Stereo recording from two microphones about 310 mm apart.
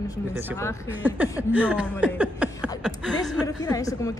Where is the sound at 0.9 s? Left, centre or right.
Centre.